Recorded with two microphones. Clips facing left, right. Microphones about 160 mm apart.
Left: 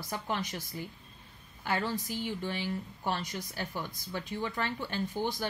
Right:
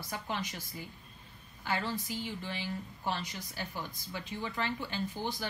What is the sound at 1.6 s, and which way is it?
A woman's voice, 50° left (ahead or behind).